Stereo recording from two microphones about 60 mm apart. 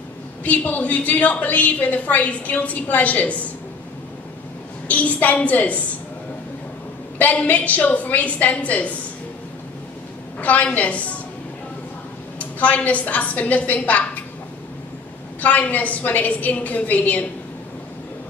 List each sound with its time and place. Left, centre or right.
0.4 s a woman's voice: left
4.8 s a woman's voice: left
7.2 s a woman's voice: left
10.4 s a woman's voice: left
12.4 s a woman's voice: left
15.4 s a woman's voice: left